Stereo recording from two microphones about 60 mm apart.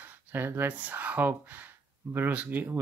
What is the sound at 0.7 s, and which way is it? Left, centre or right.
Speech, right.